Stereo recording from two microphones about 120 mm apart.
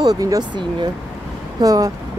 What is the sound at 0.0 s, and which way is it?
Speech, 30° right (ahead or behind).